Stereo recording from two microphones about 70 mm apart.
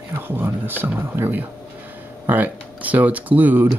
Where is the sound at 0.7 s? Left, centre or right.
Right.